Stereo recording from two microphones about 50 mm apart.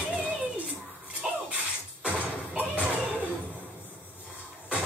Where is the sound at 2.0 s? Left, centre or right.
Right.